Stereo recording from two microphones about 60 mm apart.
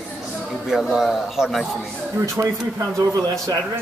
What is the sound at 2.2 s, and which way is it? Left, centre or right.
Speech, right.